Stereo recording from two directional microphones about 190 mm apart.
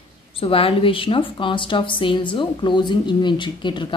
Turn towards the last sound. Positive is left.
turn(degrees=25)  # may be behind; listen again after turning